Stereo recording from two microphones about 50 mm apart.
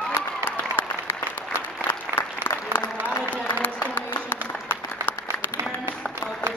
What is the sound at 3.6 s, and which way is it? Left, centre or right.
Applause, left.